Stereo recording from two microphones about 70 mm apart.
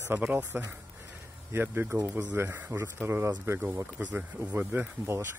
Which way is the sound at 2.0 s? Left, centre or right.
Right.